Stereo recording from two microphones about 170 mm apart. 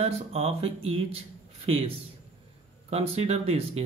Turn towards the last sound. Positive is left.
turn(degrees=-35)  # may be behind; listen again after turning